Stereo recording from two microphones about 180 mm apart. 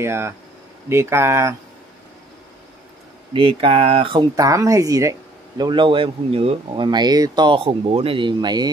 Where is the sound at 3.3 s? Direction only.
30° right (ahead or behind).